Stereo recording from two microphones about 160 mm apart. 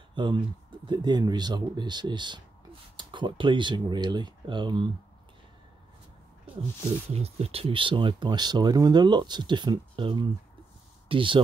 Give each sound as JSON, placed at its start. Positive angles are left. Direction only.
{"t": 0.1, "sound": "speech", "side_deg": -30}
{"t": 7.2, "sound": "speech", "side_deg": -40}